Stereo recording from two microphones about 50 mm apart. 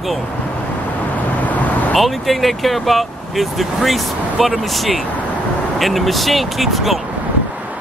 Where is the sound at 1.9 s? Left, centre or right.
Centre.